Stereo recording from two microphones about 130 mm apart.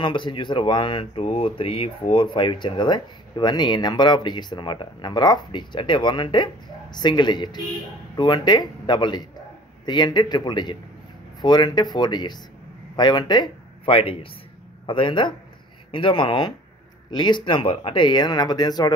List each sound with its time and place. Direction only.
0.0 s speech: 40° left (ahead or behind)